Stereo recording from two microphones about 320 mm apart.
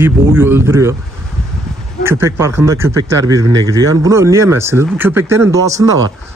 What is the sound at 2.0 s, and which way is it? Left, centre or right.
A man's voice, centre.